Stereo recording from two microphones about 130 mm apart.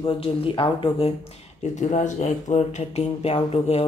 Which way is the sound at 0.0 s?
45° left (ahead or behind).